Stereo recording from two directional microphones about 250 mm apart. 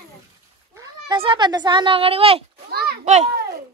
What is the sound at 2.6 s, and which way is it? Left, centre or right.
Children playing, right.